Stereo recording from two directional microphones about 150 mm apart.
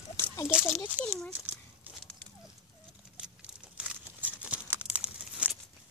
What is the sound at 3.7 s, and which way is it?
Crumpling, 10° right (ahead or behind).